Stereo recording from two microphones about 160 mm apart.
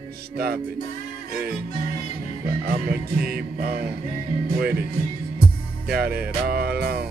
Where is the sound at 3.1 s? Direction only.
70° right (ahead or behind).